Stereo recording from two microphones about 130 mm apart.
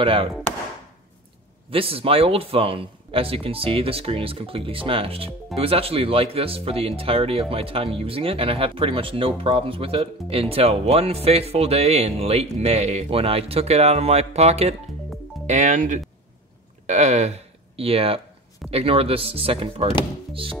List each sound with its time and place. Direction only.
0.0 s speech: 45° right (ahead or behind)
1.7 s speech: 45° right (ahead or behind)
15.4 s speech: 65° right (ahead or behind)
16.8 s speech: 60° right (ahead or behind); by 19.9 s 45° right (ahead or behind)